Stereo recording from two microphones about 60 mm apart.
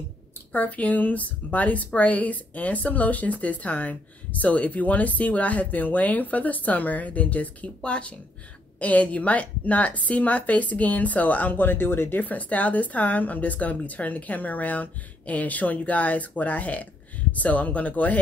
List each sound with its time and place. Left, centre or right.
0.5 s a woman's voice: left